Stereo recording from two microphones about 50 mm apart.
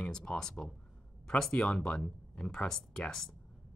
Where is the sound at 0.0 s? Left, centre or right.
Centre.